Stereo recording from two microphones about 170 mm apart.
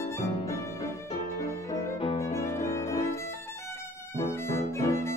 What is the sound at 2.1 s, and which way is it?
Violin, 15° left (ahead or behind).